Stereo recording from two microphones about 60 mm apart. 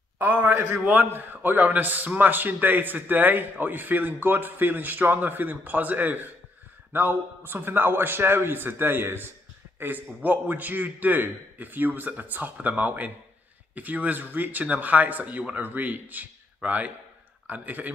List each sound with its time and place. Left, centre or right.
0.2 s a man's voice: right